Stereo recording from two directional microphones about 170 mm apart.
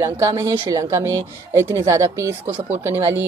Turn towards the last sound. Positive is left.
turn(degrees=-15)  # may be behind; listen again after turning